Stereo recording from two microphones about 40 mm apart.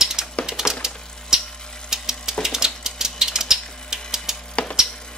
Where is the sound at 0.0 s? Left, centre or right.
Centre.